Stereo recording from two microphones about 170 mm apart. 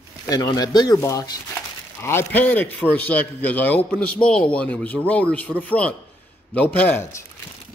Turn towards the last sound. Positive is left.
turn(degrees=10)  # may be behind; listen again after turning